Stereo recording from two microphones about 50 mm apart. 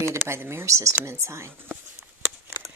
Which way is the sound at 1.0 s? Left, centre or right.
Right.